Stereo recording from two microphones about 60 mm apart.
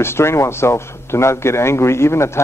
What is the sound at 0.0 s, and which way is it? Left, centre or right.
A man's voice, left.